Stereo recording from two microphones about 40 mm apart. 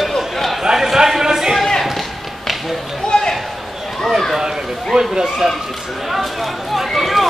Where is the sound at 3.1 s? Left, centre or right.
Centre.